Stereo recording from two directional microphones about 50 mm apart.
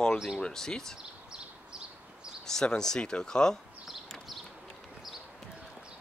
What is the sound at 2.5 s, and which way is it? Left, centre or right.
Speech, centre.